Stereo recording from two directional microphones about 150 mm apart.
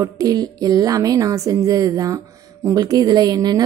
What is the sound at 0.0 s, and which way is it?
Speech, 25° right (ahead or behind).